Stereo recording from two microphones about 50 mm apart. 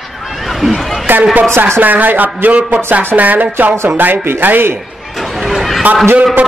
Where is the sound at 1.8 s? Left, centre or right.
Right.